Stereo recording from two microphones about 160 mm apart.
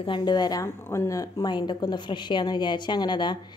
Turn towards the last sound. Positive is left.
turn(degrees=30)  # may be behind; listen again after turning